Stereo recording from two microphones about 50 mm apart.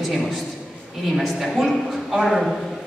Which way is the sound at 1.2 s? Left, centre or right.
Centre.